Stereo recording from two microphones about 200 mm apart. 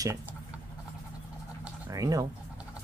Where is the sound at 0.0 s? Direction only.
15° right (ahead or behind).